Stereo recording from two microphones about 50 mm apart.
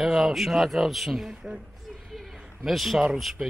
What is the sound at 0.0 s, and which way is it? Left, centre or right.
A man's voice, centre.